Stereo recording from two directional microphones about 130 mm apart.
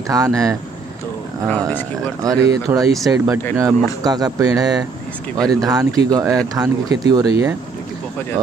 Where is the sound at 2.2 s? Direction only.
30° right (ahead or behind).